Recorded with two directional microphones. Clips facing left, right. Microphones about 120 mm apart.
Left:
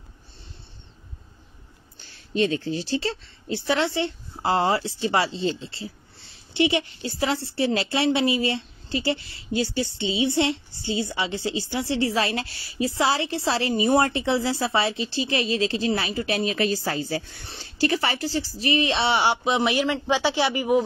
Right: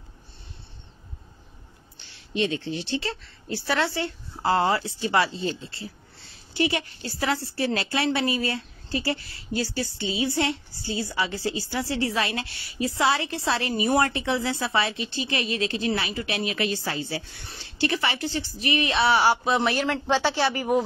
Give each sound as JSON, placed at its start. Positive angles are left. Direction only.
{"t": 2.0, "sound": "speech", "side_deg": 40}
{"t": 3.4, "sound": "a woman's voice", "side_deg": 20}